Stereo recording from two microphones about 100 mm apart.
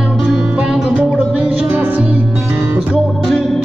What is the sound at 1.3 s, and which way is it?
Music, 15° right (ahead or behind).